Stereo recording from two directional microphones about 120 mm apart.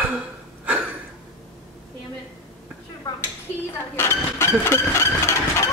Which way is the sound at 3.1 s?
35° left (ahead or behind).